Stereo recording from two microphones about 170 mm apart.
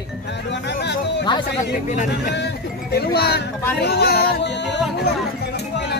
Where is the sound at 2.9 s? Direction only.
70° left (ahead or behind); by 5.0 s 90° left.